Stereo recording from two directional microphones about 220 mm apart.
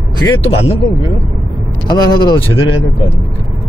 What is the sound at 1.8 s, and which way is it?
Speech, 20° left (ahead or behind).